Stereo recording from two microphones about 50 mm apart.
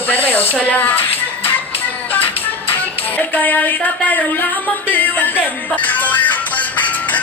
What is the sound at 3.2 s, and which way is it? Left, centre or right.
Music, left.